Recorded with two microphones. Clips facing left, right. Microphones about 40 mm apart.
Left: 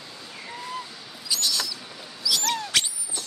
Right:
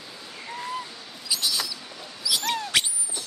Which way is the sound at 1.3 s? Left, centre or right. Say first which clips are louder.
Even; centre.